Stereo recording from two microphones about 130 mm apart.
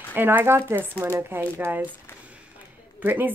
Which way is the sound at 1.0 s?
20° right (ahead or behind).